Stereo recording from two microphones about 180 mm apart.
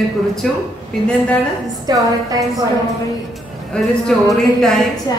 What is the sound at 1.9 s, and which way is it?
Speech, 25° right (ahead or behind).